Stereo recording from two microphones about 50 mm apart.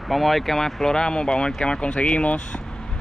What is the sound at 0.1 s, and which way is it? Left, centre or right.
A woman's voice, centre.